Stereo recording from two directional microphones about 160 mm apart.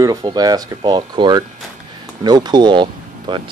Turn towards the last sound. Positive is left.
turn(degrees=-30)  # may be behind; listen again after turning